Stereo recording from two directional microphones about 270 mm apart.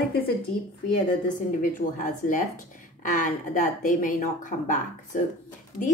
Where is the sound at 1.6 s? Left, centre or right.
Left.